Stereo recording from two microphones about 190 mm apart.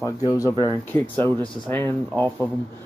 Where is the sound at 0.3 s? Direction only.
15° left (ahead or behind).